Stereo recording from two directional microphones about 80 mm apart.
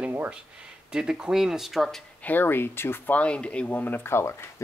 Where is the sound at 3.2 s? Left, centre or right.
Centre; by 4.5 s left.